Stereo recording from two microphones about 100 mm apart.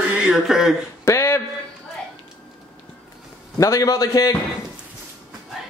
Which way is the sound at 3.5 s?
35° left (ahead or behind).